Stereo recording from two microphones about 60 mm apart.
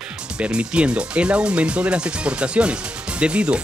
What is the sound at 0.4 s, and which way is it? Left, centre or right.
Speech, centre.